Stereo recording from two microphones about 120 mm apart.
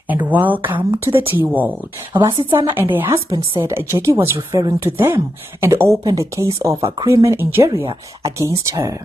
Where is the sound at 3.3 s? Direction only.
35° right (ahead or behind).